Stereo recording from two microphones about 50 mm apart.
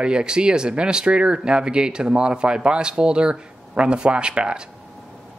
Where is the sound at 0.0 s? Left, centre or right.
Centre.